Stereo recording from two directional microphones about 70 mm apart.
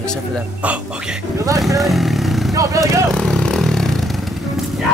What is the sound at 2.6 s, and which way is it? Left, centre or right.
Speech, right.